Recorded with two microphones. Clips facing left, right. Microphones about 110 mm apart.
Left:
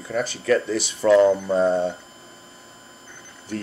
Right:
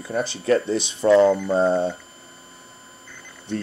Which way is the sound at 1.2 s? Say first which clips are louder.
Even; 20° left (ahead or behind).